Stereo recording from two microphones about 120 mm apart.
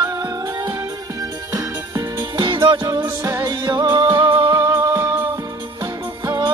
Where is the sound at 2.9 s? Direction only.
25° right (ahead or behind).